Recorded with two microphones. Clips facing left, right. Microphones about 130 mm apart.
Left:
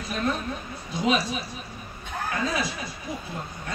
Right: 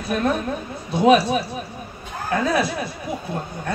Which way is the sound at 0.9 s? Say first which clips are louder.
Right 10 dB; 60° right (ahead or behind).